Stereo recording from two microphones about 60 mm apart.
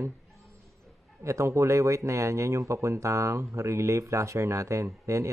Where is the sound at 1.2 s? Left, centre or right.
Right.